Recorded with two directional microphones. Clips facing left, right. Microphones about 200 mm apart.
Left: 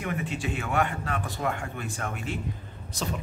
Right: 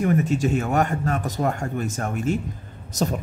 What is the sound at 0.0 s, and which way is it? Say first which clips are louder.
Speech: right 10 dB; 40° right (ahead or behind).